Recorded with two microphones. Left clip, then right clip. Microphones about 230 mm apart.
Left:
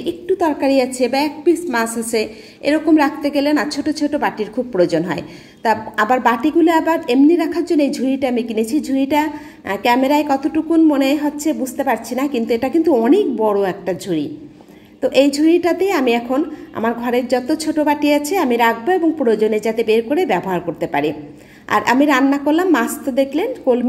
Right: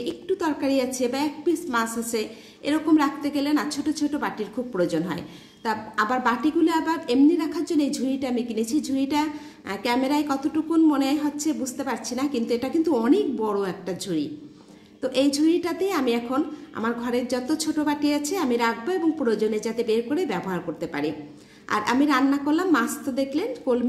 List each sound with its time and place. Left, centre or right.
0.0 s a sound: centre
0.6 s a woman's voice: right
12.5 s a woman's voice: right